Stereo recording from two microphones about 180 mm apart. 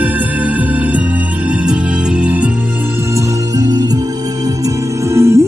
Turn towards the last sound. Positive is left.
turn(degrees=-15)  # may be behind; listen again after turning